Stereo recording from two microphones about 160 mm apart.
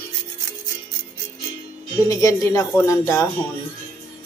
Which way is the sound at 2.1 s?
20° left (ahead or behind).